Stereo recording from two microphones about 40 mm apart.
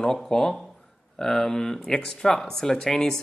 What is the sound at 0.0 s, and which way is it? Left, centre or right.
Speech, centre.